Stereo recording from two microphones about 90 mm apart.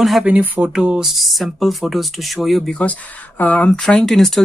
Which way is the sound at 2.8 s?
15° left (ahead or behind).